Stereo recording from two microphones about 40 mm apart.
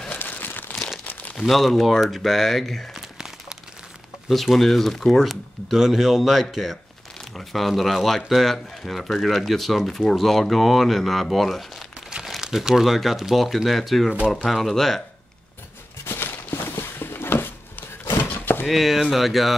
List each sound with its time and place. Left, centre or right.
0.2 s crumpling: left
1.3 s speech: centre
2.9 s crumpling: centre
4.3 s speech: centre
5.7 s speech: centre
12.4 s speech: centre
16.1 s a sound: left
18.0 s chopping: left
18.7 s speech: centre